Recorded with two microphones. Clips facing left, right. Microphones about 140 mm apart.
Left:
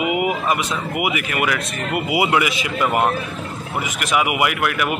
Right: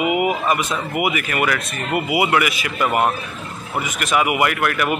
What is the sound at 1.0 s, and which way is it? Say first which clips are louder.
A man's voice: right 1 dB; 15° left (ahead or behind).